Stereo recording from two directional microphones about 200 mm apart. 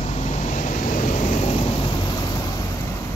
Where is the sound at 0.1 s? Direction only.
35° left (ahead or behind); by 2.5 s 20° left (ahead or behind).